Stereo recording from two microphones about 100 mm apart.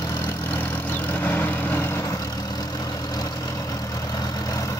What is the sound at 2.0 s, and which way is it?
Vehicle, 40° left (ahead or behind).